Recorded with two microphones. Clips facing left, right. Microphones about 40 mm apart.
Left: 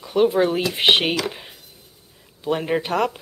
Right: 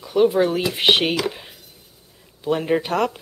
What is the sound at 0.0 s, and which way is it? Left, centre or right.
Speech, centre.